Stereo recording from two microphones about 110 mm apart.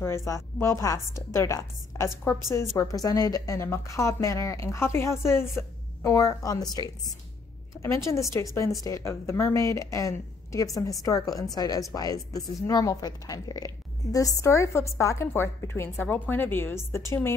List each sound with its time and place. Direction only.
0.0 s a woman's voice: 25° left (ahead or behind)
7.7 s a woman's voice: 25° left (ahead or behind)